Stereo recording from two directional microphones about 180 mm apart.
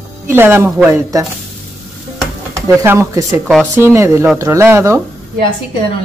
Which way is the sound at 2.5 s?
15° right (ahead or behind).